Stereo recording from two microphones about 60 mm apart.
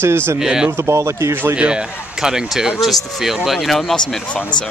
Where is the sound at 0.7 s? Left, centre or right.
Right.